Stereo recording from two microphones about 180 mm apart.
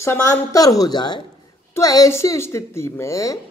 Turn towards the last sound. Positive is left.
turn(degrees=15)  # may be behind; listen again after turning